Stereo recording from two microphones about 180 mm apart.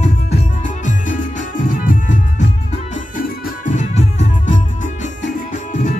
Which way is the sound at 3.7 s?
40° left (ahead or behind).